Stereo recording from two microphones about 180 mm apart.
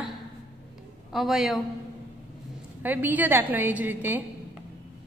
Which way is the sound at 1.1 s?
Centre (ahead or behind).